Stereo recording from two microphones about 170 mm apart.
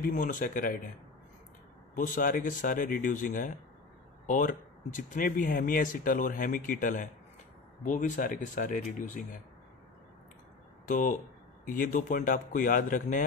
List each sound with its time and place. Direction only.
0.0 s speech: 55° left (ahead or behind)
2.0 s speech: 55° left (ahead or behind)
10.9 s speech: 50° left (ahead or behind)